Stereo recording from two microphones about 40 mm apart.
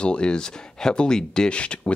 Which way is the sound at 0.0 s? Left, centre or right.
Left.